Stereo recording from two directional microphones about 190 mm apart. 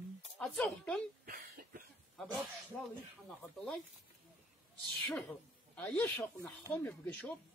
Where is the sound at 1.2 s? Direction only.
50° right (ahead or behind).